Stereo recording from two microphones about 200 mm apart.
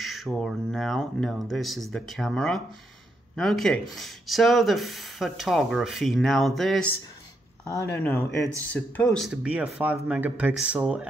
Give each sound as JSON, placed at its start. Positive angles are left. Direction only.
{"t": 0.0, "sound": "speech", "side_deg": 0}
{"t": 7.6, "sound": "speech", "side_deg": 15}